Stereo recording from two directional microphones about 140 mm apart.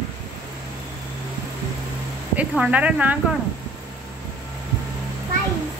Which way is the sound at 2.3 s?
10° right (ahead or behind).